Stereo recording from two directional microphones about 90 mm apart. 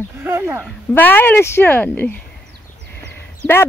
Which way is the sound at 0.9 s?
20° left (ahead or behind).